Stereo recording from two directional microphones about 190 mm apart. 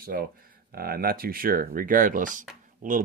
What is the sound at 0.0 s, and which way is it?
Speech, 50° right (ahead or behind).